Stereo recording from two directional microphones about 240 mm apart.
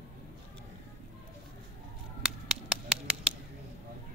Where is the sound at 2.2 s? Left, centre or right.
Centre.